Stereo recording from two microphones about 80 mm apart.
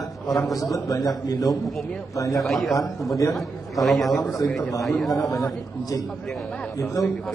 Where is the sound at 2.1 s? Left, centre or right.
Left.